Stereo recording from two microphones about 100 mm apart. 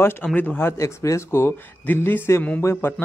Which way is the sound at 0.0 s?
15° left (ahead or behind).